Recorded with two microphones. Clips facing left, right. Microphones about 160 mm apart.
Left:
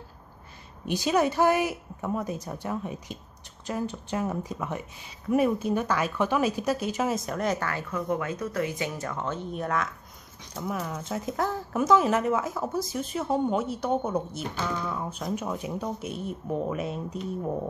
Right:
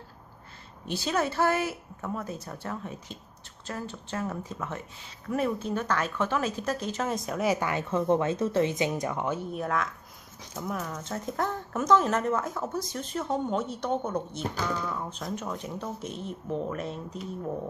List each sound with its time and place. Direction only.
0.8 s speech: 15° left (ahead or behind); by 7.8 s 15° right (ahead or behind)
7.9 s speech: 25° right (ahead or behind); by 17.2 s 10° left (ahead or behind)